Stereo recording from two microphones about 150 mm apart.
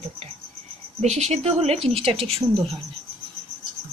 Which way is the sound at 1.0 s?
45° right (ahead or behind).